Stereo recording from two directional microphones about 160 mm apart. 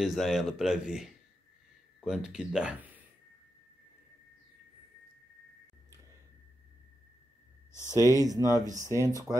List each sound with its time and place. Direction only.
0.0 s speech: centre (ahead or behind)
7.7 s speech: 20° left (ahead or behind)
8.1 s speech: 20° right (ahead or behind)